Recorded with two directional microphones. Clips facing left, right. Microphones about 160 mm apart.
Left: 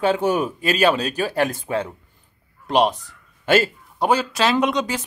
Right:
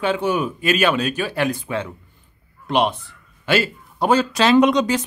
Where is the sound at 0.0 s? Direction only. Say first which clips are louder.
Left 1 dB; 40° left (ahead or behind).